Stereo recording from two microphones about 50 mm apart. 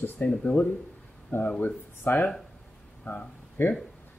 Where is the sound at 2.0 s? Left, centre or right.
Left.